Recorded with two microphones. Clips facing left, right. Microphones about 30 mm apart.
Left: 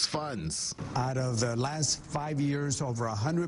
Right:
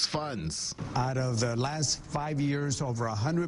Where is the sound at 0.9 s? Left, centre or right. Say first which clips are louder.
Right 1 dB; right.